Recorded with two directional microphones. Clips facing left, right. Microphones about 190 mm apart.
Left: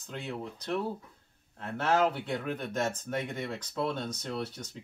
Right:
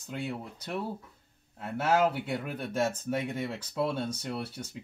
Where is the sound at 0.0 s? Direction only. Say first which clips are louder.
Right 2 dB; 10° right (ahead or behind).